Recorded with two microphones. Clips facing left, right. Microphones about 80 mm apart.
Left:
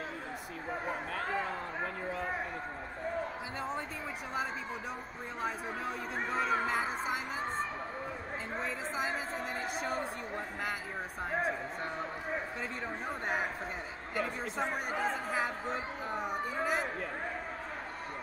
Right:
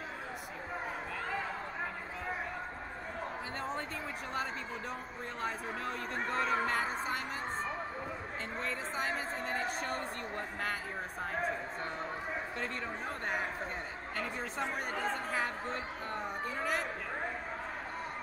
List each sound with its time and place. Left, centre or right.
5.4 s speech: centre
14.2 s speech: centre